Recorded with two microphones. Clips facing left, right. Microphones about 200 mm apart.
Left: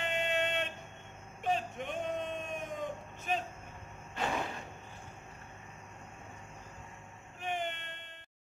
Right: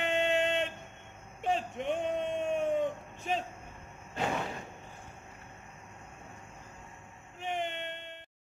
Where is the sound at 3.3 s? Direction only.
25° right (ahead or behind).